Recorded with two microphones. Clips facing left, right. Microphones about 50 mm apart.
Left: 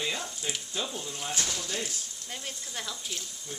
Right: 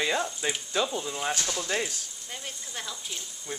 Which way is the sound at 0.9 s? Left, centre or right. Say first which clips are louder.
Right 6 dB; right.